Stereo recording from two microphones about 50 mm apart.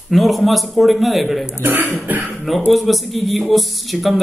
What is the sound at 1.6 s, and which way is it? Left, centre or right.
Speech, right.